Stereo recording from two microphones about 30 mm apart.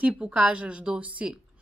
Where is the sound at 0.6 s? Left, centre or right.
Right.